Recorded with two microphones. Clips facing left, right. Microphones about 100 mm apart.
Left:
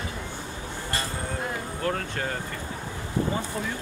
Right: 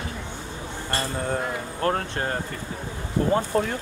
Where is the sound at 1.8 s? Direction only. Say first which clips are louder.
Right 5 dB; 40° right (ahead or behind).